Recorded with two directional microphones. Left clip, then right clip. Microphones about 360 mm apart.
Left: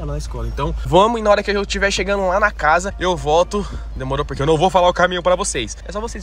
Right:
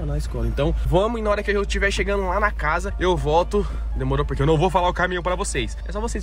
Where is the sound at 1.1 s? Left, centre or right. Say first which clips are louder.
Left 6 dB; centre.